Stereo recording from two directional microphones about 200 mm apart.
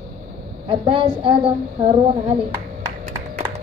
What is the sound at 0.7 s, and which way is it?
Speech, 25° right (ahead or behind).